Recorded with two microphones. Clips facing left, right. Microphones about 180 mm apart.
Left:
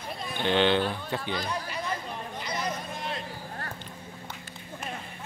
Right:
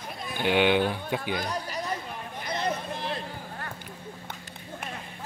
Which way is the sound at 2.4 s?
55° right (ahead or behind).